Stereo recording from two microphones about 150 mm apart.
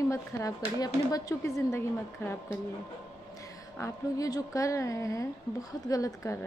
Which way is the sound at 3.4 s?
20° left (ahead or behind).